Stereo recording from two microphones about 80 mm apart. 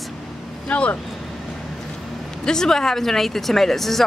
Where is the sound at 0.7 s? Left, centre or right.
Centre.